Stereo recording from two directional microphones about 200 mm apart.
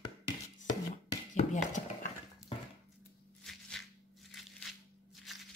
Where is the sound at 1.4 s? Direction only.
35° left (ahead or behind).